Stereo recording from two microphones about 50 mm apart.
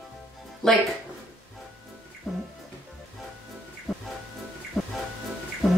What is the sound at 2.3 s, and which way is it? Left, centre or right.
Speech, centre.